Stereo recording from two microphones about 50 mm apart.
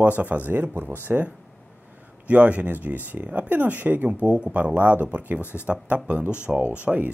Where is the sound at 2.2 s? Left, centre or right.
Right.